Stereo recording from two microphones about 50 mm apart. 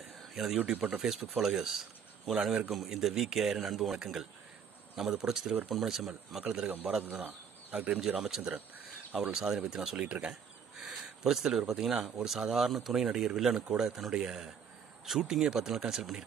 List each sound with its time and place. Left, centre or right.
0.3 s a man's voice: centre
0.7 s speech: right
1.0 s a man's voice: centre
7.0 s speech: right
8.0 s speech: centre